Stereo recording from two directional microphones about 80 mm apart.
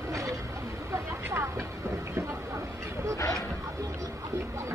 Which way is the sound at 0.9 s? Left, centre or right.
Right.